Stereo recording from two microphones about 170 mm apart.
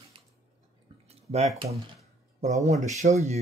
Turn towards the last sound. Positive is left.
turn(degrees=-40)  # may be behind; listen again after turning